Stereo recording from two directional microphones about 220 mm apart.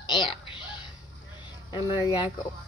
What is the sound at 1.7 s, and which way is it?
Speech, 20° left (ahead or behind).